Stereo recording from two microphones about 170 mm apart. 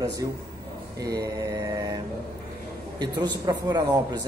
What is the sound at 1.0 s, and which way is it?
Speech, 20° right (ahead or behind).